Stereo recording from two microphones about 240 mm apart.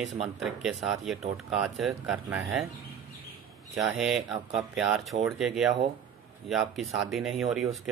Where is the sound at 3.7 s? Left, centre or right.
Centre.